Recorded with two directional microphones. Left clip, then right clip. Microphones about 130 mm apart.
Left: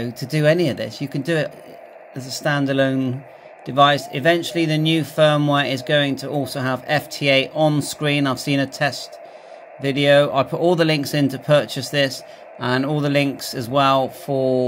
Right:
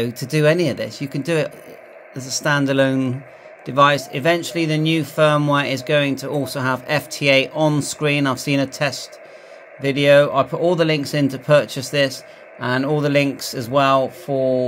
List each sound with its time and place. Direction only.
0.0 s speech: 25° right (ahead or behind)
0.4 s speech: 10° right (ahead or behind)
14.2 s speech: 15° left (ahead or behind)